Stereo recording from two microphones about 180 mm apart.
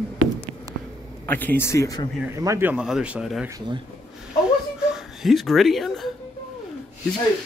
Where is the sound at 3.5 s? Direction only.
25° right (ahead or behind).